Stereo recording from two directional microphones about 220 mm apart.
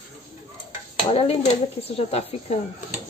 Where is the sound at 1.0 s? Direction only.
25° left (ahead or behind).